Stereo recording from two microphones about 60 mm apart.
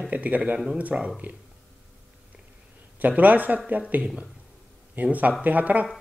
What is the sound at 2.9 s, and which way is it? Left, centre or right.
Speech, right.